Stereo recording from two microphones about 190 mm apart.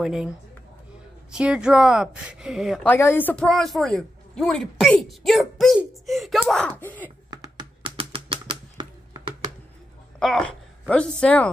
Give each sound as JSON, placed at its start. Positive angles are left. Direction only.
{"t": 0.0, "sound": "speech", "side_deg": 0}
{"t": 1.3, "sound": "speech", "side_deg": -5}
{"t": 7.2, "sound": "typewriter", "side_deg": -20}
{"t": 10.1, "sound": "speech", "side_deg": 5}